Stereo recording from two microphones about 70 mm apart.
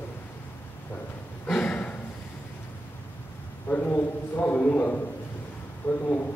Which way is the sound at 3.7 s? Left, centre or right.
Left.